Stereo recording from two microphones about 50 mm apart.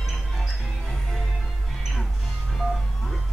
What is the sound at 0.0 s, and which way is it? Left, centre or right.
Music, centre.